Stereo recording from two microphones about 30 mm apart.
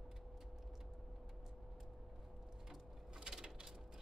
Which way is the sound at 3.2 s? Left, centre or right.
Right.